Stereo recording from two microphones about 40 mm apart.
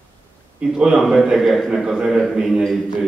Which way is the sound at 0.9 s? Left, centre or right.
Centre.